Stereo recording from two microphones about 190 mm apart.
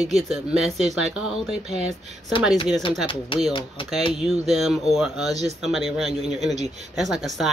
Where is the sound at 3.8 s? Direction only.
25° left (ahead or behind).